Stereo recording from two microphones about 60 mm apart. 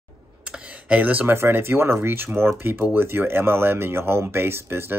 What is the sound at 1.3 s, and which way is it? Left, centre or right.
Speech, right.